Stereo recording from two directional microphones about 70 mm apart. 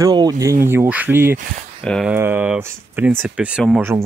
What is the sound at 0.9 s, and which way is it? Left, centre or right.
Speech, right.